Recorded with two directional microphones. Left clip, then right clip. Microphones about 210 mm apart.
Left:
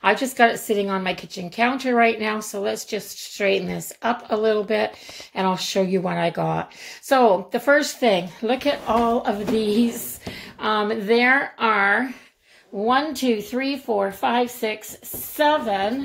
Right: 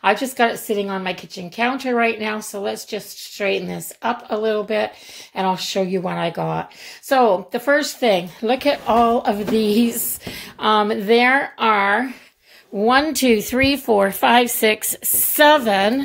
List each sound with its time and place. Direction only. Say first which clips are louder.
0.0 s a woman's voice: even; 5° right (ahead or behind)
8.5 s speech: right 4 dB; 20° right (ahead or behind)
12.7 s speech: right 4 dB; 35° right (ahead or behind)